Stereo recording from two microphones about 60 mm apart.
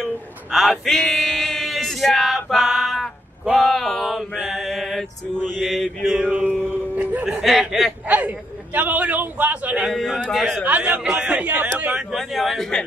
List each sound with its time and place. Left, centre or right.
0.5 s male singing: centre
3.6 s speech: centre
4.5 s mantra: centre
6.2 s a sound: right
7.2 s speech: centre
8.1 s a man's voice: right
9.8 s speech: centre
10.6 s speech: right
11.9 s a man's voice: centre
12.2 s speech: centre